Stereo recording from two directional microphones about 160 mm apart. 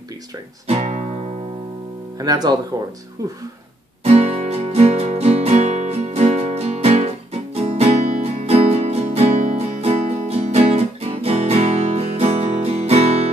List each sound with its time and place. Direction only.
0.7 s speech: 45° right (ahead or behind)
2.1 s speech: 25° right (ahead or behind)
4.0 s music: 40° right (ahead or behind)